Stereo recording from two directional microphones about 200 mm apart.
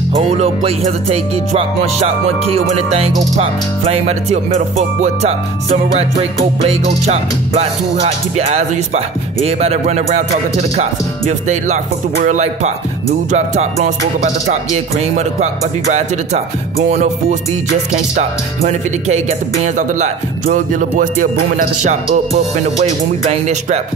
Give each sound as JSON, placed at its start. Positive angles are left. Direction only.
{"t": 0.1, "sound": "music", "side_deg": -35}